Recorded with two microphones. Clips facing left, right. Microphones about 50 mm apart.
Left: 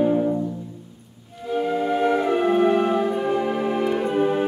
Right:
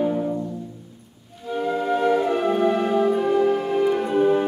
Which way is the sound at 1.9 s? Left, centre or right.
Centre.